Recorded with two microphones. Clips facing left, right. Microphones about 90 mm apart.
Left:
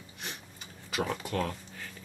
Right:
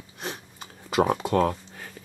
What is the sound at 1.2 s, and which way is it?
Speech, 35° right (ahead or behind).